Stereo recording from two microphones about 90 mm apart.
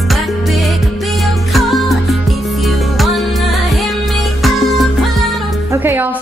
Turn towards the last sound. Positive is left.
turn(degrees=-20)  # may be behind; listen again after turning